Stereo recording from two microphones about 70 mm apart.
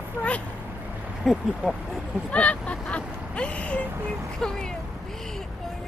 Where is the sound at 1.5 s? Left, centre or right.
Centre.